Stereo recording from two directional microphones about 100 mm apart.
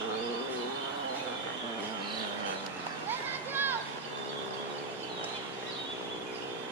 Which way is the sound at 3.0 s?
20° right (ahead or behind).